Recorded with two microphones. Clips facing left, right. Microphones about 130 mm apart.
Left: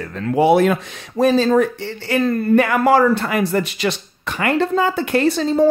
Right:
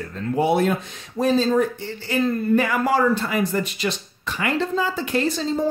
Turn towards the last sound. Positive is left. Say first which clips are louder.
# left 7 dB
turn(degrees=70)  # may be behind; listen again after turning